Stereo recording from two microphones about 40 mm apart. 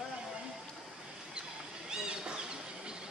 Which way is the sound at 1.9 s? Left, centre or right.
Centre.